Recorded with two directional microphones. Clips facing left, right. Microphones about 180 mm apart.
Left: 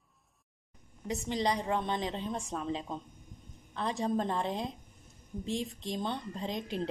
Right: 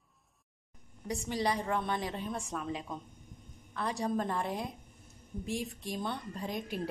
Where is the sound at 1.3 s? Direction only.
20° left (ahead or behind).